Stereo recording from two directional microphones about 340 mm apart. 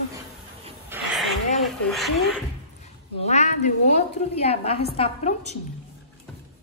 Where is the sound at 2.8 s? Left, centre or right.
Centre.